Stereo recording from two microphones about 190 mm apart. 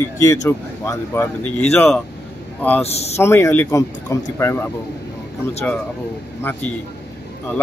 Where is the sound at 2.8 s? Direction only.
35° left (ahead or behind).